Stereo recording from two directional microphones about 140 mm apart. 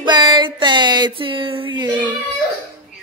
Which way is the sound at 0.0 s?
30° right (ahead or behind).